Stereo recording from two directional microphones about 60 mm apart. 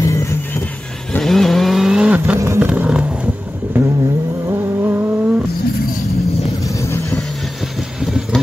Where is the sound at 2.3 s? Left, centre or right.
Right.